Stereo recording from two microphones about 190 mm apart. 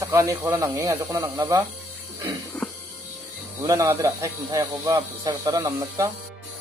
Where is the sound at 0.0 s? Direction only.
15° right (ahead or behind).